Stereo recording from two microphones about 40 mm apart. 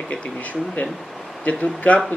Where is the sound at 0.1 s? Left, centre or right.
Left.